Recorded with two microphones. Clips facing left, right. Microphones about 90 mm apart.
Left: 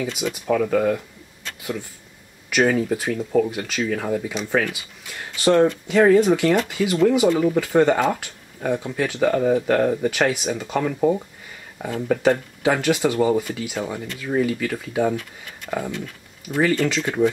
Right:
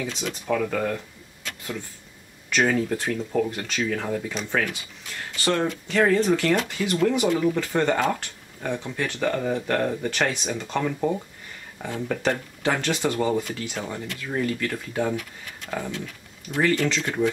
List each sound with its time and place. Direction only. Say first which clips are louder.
0.0 s speech: left 4 dB; 10° left (ahead or behind)